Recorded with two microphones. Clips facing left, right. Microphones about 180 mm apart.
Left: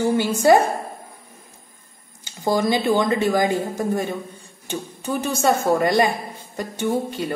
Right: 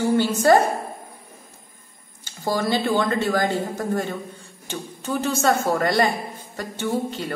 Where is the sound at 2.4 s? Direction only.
15° left (ahead or behind).